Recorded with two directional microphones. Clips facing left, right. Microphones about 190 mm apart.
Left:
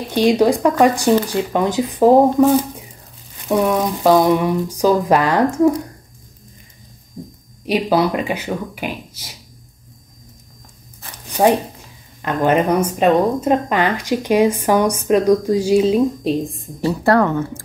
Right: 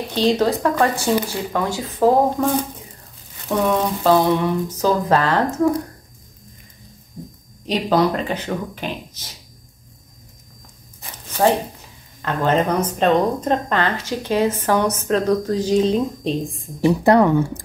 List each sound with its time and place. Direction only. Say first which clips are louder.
0.1 s speech: left 4 dB; 10° left (ahead or behind)
7.6 s speech: left 1 dB; 10° left (ahead or behind)
11.3 s a sound: left 3 dB; 15° left (ahead or behind)
12.2 s speech: left 3 dB; 15° left (ahead or behind)
16.8 s speech: right 1 dB; 15° right (ahead or behind)